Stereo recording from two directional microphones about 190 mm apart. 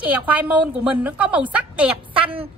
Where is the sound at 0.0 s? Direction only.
10° right (ahead or behind).